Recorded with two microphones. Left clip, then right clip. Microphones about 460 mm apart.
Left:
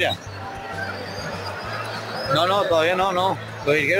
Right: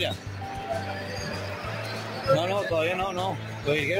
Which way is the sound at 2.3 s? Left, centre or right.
Right.